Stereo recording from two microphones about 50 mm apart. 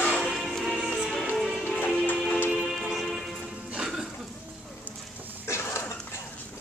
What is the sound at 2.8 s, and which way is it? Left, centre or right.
Music, centre.